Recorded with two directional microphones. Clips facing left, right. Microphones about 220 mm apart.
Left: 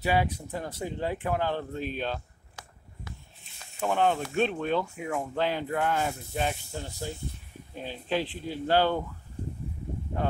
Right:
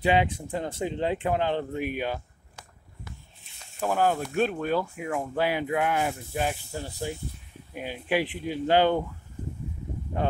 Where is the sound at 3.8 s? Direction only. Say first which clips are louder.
Right 1 dB; 5° right (ahead or behind).